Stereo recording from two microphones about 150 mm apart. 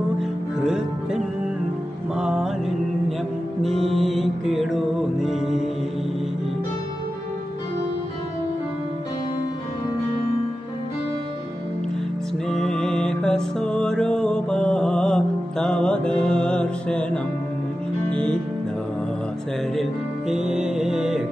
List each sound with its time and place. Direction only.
2.1 s music: 5° right (ahead or behind)
3.6 s music: centre (ahead or behind)
12.4 s music: 5° left (ahead or behind)
19.8 s music: 5° right (ahead or behind)